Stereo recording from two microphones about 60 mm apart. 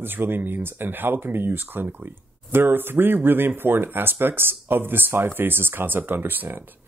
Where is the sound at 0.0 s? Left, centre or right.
Right.